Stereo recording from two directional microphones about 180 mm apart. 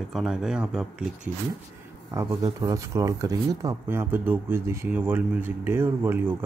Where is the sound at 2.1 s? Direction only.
15° right (ahead or behind).